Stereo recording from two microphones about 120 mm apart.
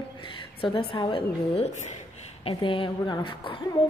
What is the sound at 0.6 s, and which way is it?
A woman's voice, 45° left (ahead or behind).